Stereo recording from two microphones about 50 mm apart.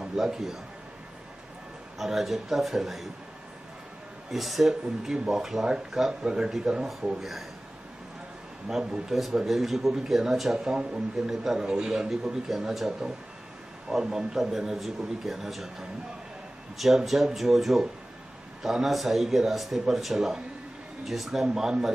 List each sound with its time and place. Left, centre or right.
0.0 s a man's voice: centre
2.0 s speech: centre
4.3 s a man's voice: centre
8.6 s speech: centre
10.7 s a man's voice: centre
11.2 s a man's voice: centre
16.7 s a man's voice: centre